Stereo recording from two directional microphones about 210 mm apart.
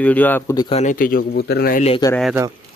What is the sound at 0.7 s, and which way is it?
A man's voice, 35° left (ahead or behind).